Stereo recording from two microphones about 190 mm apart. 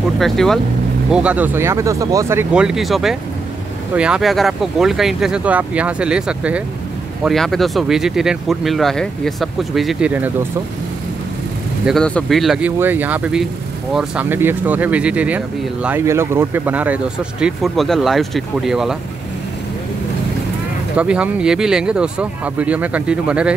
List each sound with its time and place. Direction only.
0.2 s speech: centre (ahead or behind)
11.8 s speech: 5° left (ahead or behind)
20.9 s speech: 5° right (ahead or behind)